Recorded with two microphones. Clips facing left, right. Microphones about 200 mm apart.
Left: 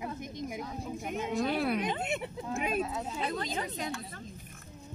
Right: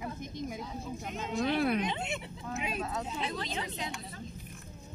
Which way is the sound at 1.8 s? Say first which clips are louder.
Left 3 dB; 50° left (ahead or behind).